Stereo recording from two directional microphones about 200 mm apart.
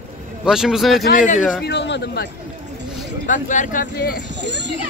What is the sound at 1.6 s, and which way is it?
Speech, 60° left (ahead or behind).